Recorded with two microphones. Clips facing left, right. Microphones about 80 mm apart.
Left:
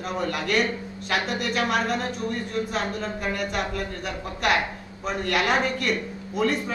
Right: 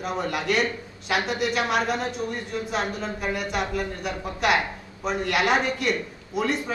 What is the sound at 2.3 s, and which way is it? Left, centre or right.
Speech, centre.